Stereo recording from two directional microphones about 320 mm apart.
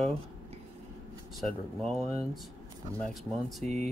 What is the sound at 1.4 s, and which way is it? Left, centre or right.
Speech, centre.